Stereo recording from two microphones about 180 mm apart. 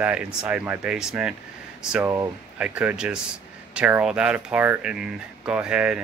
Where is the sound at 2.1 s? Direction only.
15° right (ahead or behind).